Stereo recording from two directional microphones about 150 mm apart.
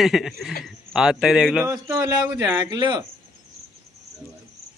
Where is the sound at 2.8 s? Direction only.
30° right (ahead or behind).